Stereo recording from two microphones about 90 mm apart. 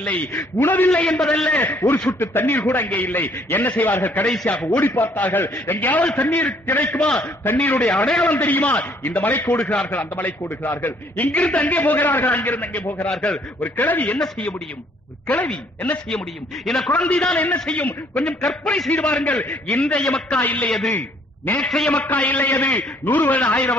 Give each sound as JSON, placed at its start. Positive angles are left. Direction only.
{"t": 0.0, "sound": "a man's voice", "side_deg": 20}
{"t": 7.8, "sound": "a man's voice", "side_deg": 10}
{"t": 9.6, "sound": "a man's voice", "side_deg": 10}
{"t": 9.8, "sound": "a man's voice", "side_deg": 20}
{"t": 14.1, "sound": "a man's voice", "side_deg": 5}
{"t": 15.2, "sound": "a man's voice", "side_deg": 15}
{"t": 16.6, "sound": "a man's voice", "side_deg": 5}
{"t": 16.9, "sound": "a man's voice", "side_deg": 15}
{"t": 18.5, "sound": "a man's voice", "side_deg": 5}
{"t": 21.6, "sound": "a man's voice", "side_deg": 5}
{"t": 21.9, "sound": "a man's voice", "side_deg": 20}